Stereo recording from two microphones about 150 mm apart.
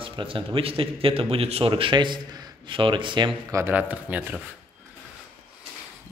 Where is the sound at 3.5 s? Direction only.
15° right (ahead or behind).